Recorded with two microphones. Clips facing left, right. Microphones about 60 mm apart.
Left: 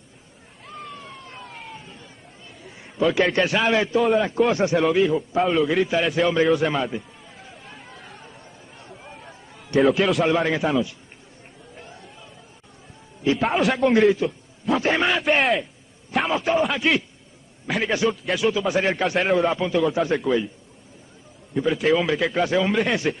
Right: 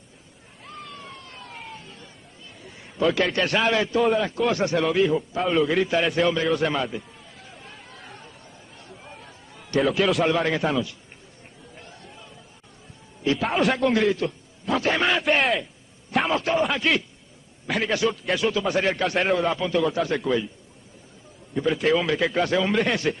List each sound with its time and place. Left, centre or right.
0.9 s emergency vehicle: centre
1.4 s vehicle: centre
1.8 s a sound: centre
3.4 s a man's voice: centre
4.4 s speech: left
4.7 s a man's voice: centre
7.5 s chatter: centre
8.3 s chatter: left
8.9 s chatter: centre
9.8 s a man's voice: centre
13.2 s a man's voice: centre
21.5 s a man's voice: centre